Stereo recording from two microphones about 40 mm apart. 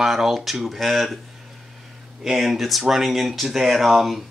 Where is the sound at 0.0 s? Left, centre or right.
Centre.